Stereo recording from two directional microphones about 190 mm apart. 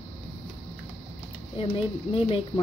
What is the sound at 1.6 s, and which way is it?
Speech, 25° left (ahead or behind).